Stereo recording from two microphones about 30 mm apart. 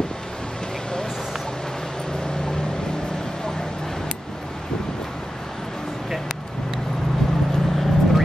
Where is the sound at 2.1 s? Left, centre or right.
Left.